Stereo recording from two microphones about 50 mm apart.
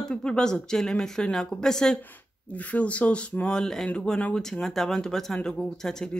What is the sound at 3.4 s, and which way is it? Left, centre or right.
Speech, centre.